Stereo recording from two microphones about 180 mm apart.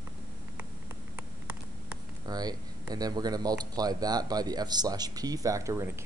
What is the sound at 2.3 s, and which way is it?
Speech, 20° right (ahead or behind).